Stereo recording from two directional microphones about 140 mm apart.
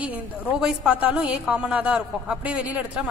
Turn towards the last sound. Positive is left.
turn(degrees=-10)  # may be behind; listen again after turning